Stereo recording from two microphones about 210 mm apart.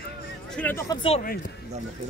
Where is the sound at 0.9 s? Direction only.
25° left (ahead or behind).